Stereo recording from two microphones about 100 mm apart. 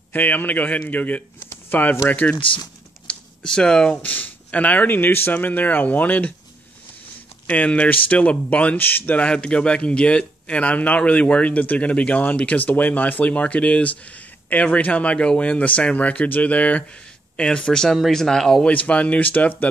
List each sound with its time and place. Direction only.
0.1 s speech: 20° left (ahead or behind)
1.5 s a sound: 20° left (ahead or behind)
2.0 s speech: 15° left (ahead or behind)
2.3 s speech: 60° left (ahead or behind)
3.1 s speech: 10° left (ahead or behind)
7.4 s speech: 15° left (ahead or behind)